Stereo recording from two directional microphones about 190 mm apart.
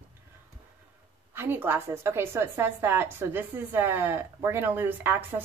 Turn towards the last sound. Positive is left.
turn(degrees=-10)  # may be behind; listen again after turning